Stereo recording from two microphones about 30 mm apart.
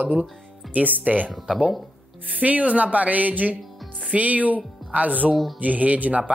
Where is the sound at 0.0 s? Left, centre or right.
Right.